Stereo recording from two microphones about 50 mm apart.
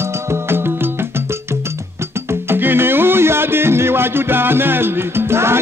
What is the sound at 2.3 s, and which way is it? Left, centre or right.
Music, right.